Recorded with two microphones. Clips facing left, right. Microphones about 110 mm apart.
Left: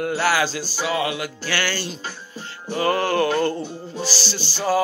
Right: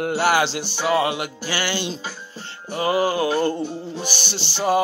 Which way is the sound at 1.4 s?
15° right (ahead or behind).